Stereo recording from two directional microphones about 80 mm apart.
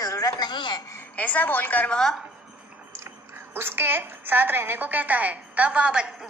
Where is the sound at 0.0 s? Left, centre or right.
Left.